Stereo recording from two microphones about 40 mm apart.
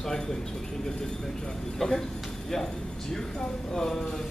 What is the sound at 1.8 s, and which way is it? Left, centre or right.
Speech, centre.